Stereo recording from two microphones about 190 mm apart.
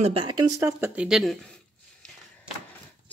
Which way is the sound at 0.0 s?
25° right (ahead or behind).